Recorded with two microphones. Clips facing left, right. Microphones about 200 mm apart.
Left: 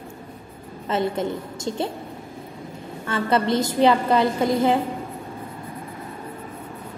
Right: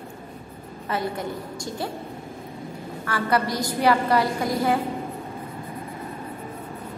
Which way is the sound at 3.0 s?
25° left (ahead or behind).